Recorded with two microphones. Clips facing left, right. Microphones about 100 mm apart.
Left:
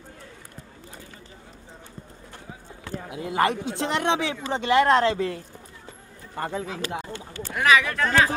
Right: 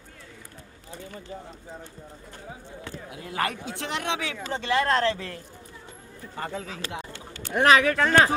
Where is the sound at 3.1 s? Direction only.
20° left (ahead or behind).